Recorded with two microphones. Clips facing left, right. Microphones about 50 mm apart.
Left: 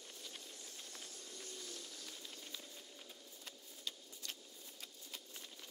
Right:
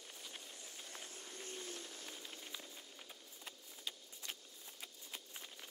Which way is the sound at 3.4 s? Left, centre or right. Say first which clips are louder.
Right 1 dB; centre.